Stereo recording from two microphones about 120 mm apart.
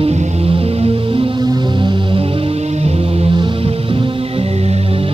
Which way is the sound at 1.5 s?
40° right (ahead or behind).